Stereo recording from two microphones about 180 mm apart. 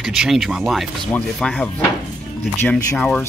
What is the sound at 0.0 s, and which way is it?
Speech, centre (ahead or behind).